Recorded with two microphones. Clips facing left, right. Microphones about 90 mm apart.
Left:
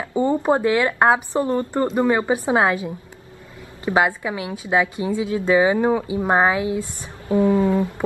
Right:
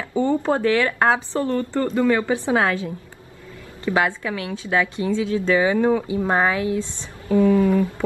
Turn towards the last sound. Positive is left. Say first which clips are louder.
# right 1 dB
turn(degrees=25)  # may be behind; listen again after turning